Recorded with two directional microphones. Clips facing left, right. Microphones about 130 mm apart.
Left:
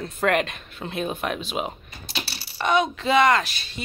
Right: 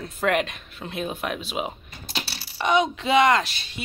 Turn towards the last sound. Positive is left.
turn(degrees=-25)  # may be behind; listen again after turning